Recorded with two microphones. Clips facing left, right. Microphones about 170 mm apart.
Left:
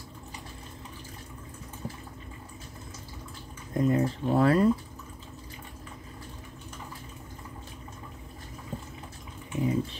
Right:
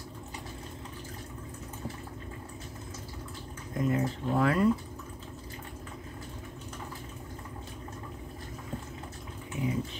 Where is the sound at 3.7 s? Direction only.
35° left (ahead or behind).